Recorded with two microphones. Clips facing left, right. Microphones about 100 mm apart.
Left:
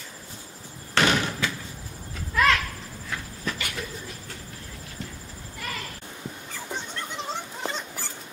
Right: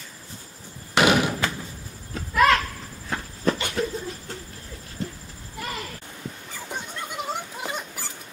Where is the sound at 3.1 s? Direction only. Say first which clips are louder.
Right 8 dB; 35° right (ahead or behind).